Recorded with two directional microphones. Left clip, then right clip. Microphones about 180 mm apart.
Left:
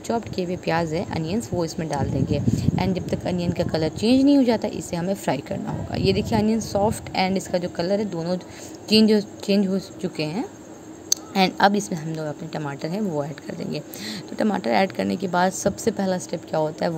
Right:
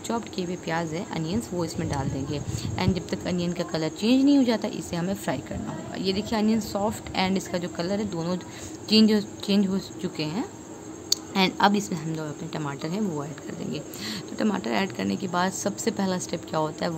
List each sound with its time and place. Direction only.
0.1 s a woman's voice: 15° left (ahead or behind)